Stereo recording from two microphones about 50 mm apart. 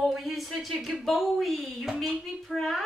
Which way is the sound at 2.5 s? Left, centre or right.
Left.